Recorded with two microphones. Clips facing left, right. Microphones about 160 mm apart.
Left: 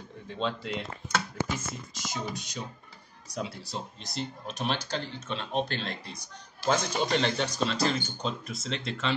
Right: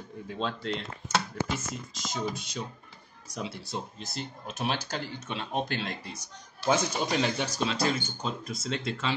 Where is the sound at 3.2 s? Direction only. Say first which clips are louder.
Left 1 dB; centre (ahead or behind).